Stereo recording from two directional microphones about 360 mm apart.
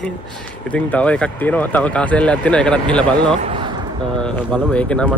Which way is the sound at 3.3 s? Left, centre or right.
Centre.